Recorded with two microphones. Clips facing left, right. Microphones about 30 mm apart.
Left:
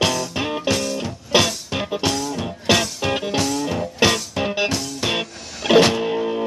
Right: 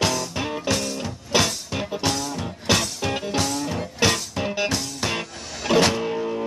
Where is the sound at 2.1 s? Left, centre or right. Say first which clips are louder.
Left 3 dB; centre.